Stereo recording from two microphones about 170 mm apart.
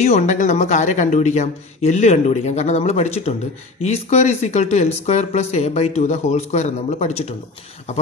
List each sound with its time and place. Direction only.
0.0 s speech: 45° left (ahead or behind)